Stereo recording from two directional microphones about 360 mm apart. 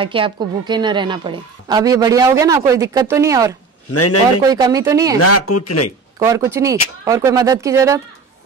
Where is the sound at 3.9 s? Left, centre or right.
Left.